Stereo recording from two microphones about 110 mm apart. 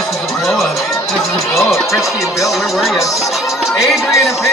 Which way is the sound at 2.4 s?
Centre (ahead or behind).